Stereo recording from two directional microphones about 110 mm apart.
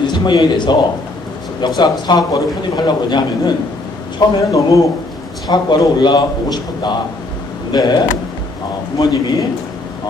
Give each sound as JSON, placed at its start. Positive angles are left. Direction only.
{"t": 0.0, "sound": "a man's voice", "side_deg": 40}
{"t": 4.4, "sound": "a man's voice", "side_deg": 30}